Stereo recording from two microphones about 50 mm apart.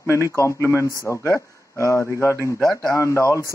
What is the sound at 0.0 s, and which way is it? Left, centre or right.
A man's voice, left.